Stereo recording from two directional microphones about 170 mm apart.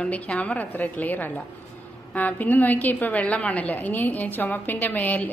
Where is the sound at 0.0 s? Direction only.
5° left (ahead or behind).